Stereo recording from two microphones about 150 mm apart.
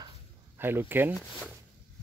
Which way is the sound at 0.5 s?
15° right (ahead or behind).